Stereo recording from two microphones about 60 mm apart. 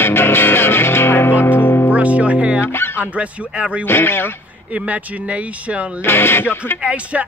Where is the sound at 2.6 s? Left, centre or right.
Left.